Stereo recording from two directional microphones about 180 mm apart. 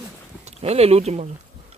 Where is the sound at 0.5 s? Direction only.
35° right (ahead or behind).